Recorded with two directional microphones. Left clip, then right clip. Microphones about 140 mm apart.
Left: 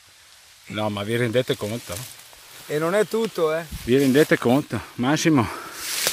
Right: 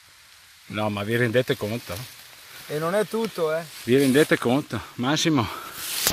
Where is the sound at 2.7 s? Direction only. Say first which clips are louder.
Left 3 dB; 45° left (ahead or behind).